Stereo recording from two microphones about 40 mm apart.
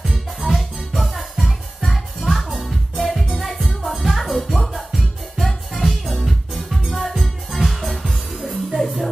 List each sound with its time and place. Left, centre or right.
0.1 s music: centre